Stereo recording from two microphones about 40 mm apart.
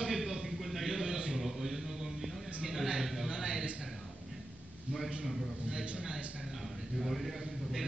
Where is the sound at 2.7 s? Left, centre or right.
Centre.